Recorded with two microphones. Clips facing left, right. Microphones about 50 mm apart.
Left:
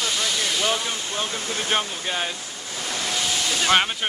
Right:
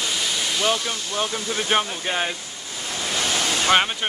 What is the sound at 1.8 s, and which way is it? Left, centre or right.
Speech, centre.